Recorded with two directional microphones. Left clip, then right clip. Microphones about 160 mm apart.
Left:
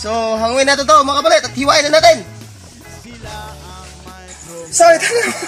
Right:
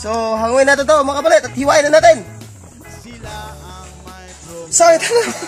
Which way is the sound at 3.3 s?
Centre (ahead or behind).